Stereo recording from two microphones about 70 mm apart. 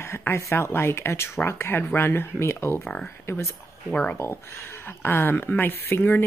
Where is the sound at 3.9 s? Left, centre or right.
Centre.